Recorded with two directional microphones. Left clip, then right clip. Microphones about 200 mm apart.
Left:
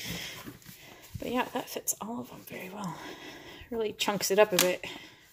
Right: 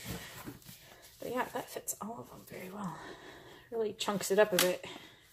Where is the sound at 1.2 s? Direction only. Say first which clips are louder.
Left 4 dB; 25° left (ahead or behind).